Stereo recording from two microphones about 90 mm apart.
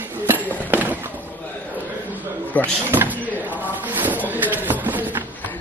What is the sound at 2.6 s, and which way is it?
Speech, 20° right (ahead or behind).